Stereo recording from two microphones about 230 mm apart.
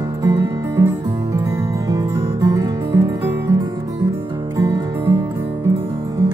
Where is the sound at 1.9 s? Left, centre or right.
Centre.